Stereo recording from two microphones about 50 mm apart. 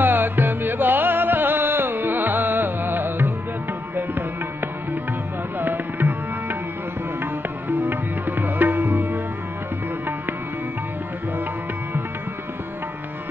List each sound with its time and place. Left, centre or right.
0.0 s music: right
5.6 s tabla: right
7.2 s music: right